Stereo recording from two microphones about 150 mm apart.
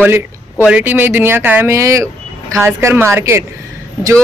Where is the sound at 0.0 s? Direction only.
10° right (ahead or behind).